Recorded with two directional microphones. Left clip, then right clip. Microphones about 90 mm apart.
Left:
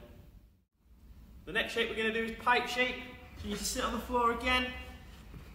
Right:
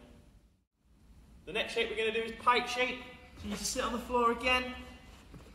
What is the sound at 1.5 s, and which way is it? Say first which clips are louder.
A man's voice: left 1 dB; 30° left (ahead or behind).